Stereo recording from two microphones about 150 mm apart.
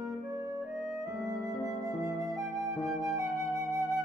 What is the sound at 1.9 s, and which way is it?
Flute, 25° right (ahead or behind).